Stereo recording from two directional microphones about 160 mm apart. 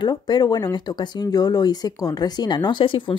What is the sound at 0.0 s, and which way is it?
Speech, 25° left (ahead or behind).